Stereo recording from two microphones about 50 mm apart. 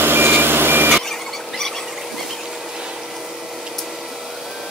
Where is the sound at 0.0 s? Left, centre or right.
Right.